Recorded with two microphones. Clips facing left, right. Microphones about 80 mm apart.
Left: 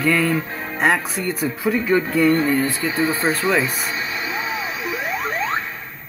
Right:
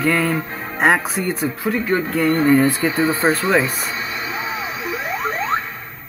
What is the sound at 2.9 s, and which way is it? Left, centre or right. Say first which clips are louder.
Speech: right 3 dB; centre.